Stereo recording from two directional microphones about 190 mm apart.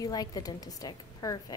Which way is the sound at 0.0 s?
20° left (ahead or behind).